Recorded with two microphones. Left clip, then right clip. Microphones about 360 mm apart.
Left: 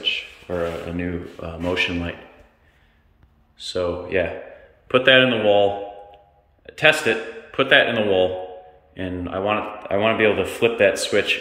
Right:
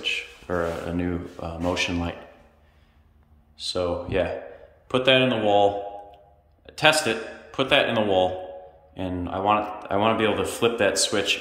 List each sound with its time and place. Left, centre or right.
0.0 s speech: centre
3.5 s a man's voice: centre